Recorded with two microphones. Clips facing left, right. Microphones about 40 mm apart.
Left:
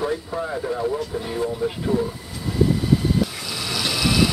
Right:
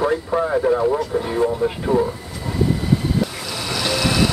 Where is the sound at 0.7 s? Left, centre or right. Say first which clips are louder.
Right 6 dB; right.